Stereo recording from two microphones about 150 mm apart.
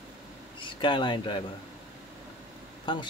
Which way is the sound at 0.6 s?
30° left (ahead or behind).